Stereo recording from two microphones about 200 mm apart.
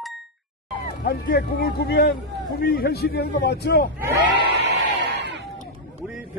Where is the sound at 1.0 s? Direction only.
50° left (ahead or behind).